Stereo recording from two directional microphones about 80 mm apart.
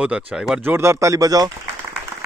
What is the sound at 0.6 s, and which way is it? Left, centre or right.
Speech, right.